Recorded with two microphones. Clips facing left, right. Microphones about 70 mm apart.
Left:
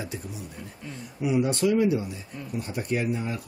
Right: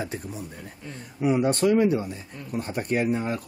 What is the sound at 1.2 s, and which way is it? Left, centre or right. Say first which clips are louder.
Speech: right 2 dB; right.